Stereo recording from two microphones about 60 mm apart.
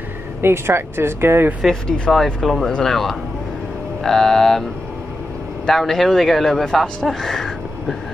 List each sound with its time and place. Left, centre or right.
0.4 s speech: right
1.7 s speech: centre
2.4 s a man's voice: centre
5.7 s a man's voice: centre